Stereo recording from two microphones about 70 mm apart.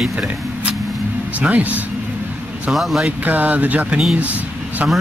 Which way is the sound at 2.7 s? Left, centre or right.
Centre.